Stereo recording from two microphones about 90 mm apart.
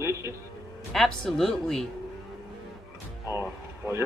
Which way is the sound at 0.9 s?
5° left (ahead or behind).